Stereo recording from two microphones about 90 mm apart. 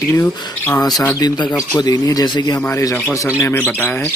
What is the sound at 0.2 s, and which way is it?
Speech, 20° left (ahead or behind).